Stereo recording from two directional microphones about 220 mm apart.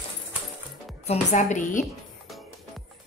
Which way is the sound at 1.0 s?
35° left (ahead or behind).